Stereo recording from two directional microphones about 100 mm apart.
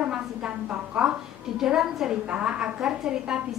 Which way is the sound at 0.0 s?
10° right (ahead or behind).